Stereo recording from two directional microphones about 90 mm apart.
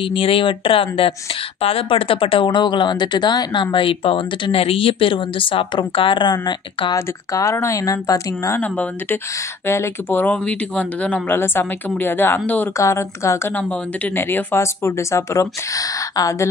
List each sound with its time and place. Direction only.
0.0 s speech: 90° left; by 3.6 s 55° left (ahead or behind)
3.7 s speech: 85° left; by 7.0 s 50° left (ahead or behind)
7.0 s speech: 35° left (ahead or behind)
8.5 s speech: 20° left (ahead or behind)
11.2 s speech: 25° left (ahead or behind)
12.7 s speech: 35° left (ahead or behind)
13.6 s speech: 20° left (ahead or behind); by 16.4 s 40° left (ahead or behind)